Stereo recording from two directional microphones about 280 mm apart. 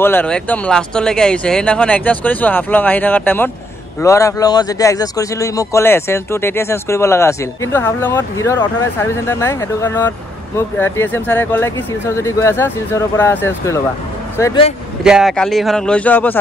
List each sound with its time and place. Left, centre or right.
0.0 s a man's voice: centre
15.0 s speech: centre